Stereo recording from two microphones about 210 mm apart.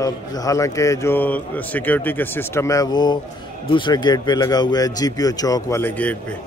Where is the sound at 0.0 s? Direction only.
15° left (ahead or behind).